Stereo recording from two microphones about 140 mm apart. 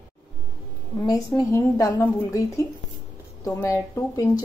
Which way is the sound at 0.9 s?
25° left (ahead or behind).